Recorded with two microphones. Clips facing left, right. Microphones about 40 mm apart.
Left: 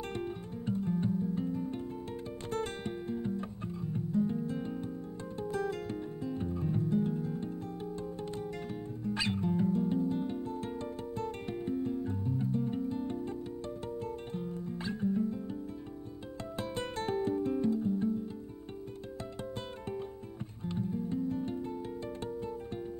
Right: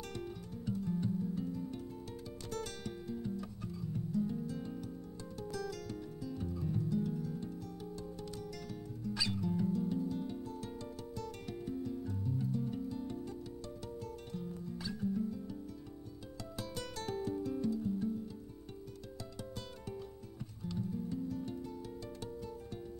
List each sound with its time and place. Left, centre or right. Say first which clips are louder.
0.1 s music: left 6 dB; left
9.0 s music: left 4 dB; left
16.5 s music: left 7 dB; left
20.6 s music: left 4 dB; left